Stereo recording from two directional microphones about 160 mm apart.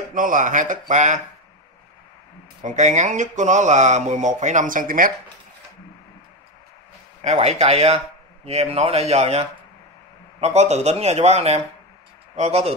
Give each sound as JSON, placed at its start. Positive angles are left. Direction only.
{"t": 0.1, "sound": "speech", "side_deg": -55}
{"t": 2.6, "sound": "speech", "side_deg": -50}
{"t": 7.2, "sound": "speech", "side_deg": -40}